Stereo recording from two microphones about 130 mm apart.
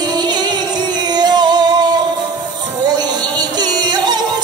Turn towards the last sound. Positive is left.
turn(degrees=-35)  # may be behind; listen again after turning